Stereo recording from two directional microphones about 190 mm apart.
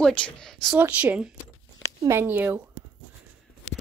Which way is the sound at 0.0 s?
5° left (ahead or behind).